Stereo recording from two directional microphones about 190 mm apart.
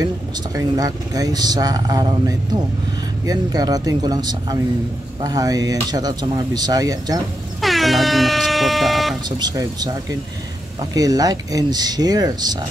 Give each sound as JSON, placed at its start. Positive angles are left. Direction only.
{"t": 0.6, "sound": "speech", "side_deg": -20}
{"t": 7.6, "sound": "air horn", "side_deg": 0}
{"t": 9.4, "sound": "speech", "side_deg": -20}